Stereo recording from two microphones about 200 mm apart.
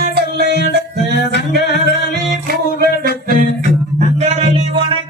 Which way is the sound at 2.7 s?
45° right (ahead or behind).